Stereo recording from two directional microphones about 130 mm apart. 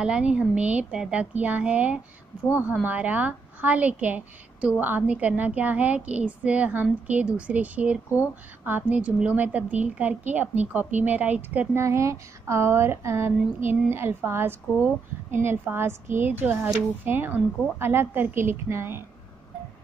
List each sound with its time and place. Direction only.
0.0 s a woman's voice: 10° right (ahead or behind)
11.7 s a woman's voice: 20° right (ahead or behind)